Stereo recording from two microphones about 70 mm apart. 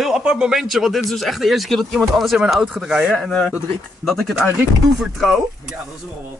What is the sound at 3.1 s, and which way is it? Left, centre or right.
Speech, centre.